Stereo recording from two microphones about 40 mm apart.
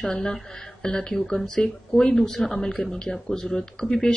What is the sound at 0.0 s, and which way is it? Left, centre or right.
Speech, centre.